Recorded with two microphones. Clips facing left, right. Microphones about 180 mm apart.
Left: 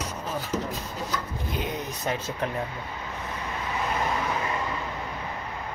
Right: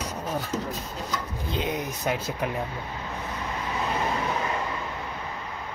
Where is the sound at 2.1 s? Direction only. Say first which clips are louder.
Right 1 dB; 10° right (ahead or behind).